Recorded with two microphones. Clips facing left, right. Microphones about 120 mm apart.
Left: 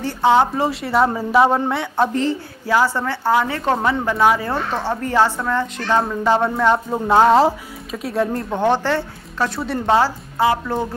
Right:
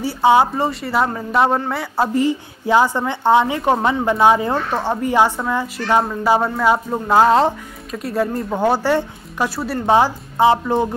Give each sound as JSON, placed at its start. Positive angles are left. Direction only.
{"t": 0.0, "sound": "a woman's voice", "side_deg": -10}
{"t": 0.6, "sound": "speech", "side_deg": 0}
{"t": 2.6, "sound": "a woman's voice", "side_deg": -20}